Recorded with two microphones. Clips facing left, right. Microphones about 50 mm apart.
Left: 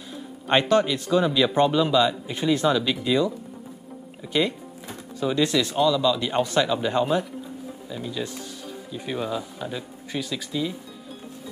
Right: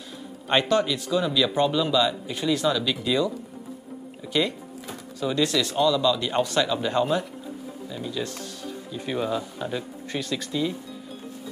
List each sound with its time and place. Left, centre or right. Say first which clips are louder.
0.5 s speech: left 2 dB; left
4.8 s music: left 2 dB; centre
5.4 s speech: left 1 dB; centre
5.8 s speech: even; centre
6.4 s speech: left 3 dB; left
6.7 s speech: left 1 dB; centre
8.2 s speech: right 1 dB; centre
8.6 s speech: right 1 dB; centre